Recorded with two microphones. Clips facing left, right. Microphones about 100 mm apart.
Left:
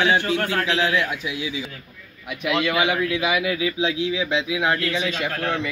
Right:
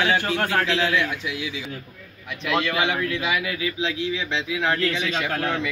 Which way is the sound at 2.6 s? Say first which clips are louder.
Left 2 dB; 15° left (ahead or behind).